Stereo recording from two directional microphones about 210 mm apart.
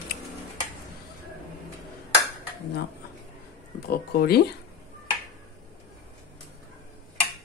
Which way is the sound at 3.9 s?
50° left (ahead or behind).